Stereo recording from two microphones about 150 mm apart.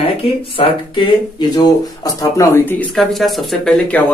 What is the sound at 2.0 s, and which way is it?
Speech, 20° left (ahead or behind).